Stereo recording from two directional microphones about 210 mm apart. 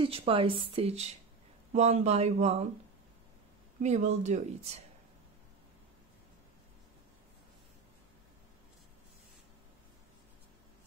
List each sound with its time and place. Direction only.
0.0 s speech: 25° right (ahead or behind)
3.8 s speech: 35° right (ahead or behind)